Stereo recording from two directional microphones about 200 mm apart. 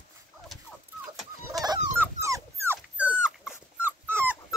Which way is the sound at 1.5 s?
20° right (ahead or behind).